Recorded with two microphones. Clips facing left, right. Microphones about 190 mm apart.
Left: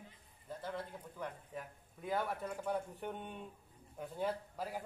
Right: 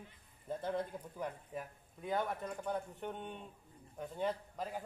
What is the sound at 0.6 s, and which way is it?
Speech, 20° right (ahead or behind).